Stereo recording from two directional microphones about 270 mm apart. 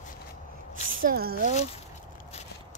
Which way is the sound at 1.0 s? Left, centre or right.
Right.